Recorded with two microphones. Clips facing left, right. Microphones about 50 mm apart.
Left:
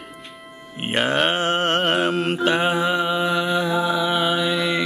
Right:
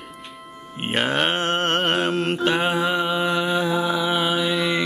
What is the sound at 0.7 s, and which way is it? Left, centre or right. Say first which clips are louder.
Music: left 1 dB; centre.